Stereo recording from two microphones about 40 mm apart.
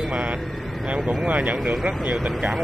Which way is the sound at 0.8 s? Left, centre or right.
Right.